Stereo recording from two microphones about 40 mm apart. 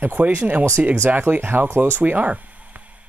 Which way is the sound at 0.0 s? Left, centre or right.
Right.